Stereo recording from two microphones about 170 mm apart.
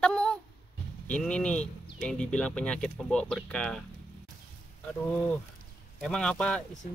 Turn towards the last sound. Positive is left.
turn(degrees=5)  # may be behind; listen again after turning